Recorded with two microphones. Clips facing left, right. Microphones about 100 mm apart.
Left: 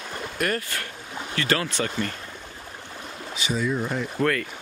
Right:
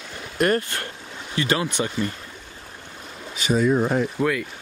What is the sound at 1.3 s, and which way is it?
Speech, 20° right (ahead or behind).